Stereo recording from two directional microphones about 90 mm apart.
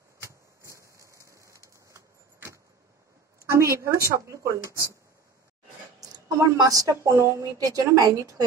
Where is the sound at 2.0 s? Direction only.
35° right (ahead or behind).